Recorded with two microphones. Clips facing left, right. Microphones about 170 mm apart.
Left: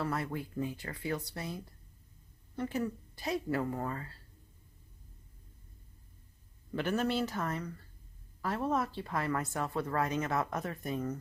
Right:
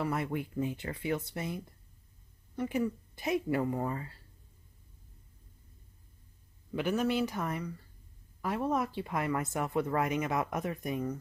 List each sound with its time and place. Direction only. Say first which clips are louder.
0.0 s speech: right 2 dB; 20° right (ahead or behind)
6.7 s speech: right 2 dB; 10° right (ahead or behind)